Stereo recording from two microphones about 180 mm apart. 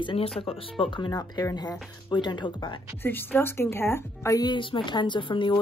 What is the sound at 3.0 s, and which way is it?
A woman's voice, 10° left (ahead or behind).